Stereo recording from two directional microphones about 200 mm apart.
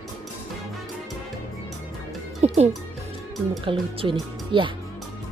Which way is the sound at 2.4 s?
30° right (ahead or behind).